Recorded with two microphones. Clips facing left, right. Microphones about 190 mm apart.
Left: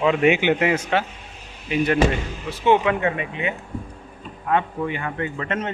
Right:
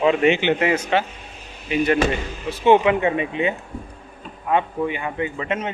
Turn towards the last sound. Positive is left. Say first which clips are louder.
# right 1 dB
turn(degrees=-15)  # may be behind; listen again after turning